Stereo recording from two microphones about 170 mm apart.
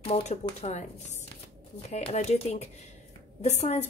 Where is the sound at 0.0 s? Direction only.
40° left (ahead or behind).